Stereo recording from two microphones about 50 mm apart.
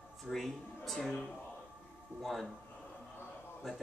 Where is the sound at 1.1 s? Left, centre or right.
Left.